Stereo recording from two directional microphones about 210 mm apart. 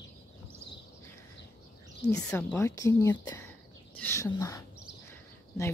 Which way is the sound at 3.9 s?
10° left (ahead or behind).